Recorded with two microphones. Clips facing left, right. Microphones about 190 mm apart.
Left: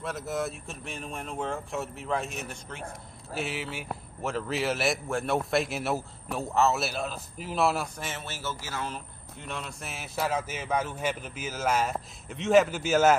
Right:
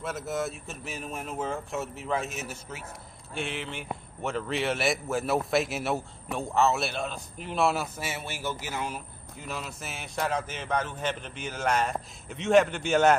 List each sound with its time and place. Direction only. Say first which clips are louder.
0.0 s a man's voice: even; centre (ahead or behind)